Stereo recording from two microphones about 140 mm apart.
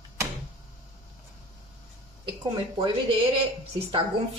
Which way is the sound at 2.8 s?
35° right (ahead or behind).